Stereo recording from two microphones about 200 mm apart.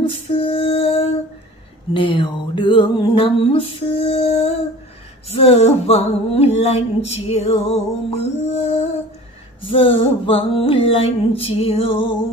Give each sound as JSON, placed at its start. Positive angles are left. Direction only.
{"t": 0.0, "sound": "female singing", "side_deg": 25}
{"t": 2.0, "sound": "music", "side_deg": 25}
{"t": 5.3, "sound": "a sound", "side_deg": 30}
{"t": 9.7, "sound": "music", "side_deg": 25}